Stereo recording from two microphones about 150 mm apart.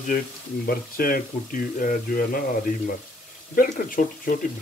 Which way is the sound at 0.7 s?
75° left (ahead or behind).